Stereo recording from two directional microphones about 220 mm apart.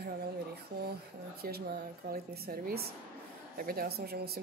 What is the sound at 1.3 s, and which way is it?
Speech, 45° right (ahead or behind).